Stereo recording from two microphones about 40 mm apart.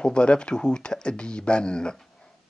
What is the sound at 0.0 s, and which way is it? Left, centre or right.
Speech, left.